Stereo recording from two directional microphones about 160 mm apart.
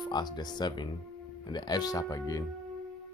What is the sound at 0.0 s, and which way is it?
Speech, 25° left (ahead or behind).